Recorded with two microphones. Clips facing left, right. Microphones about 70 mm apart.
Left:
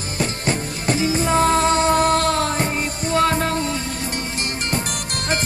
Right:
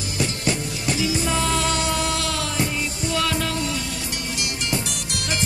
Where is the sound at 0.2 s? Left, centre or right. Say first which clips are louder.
Left 2 dB; left.